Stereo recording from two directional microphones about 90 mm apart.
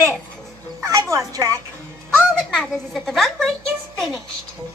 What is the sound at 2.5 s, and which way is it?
A child's voice, 5° left (ahead or behind).